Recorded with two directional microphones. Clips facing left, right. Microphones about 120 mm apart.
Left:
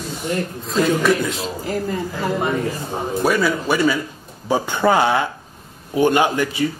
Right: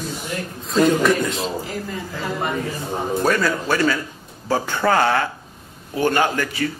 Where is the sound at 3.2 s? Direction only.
10° left (ahead or behind).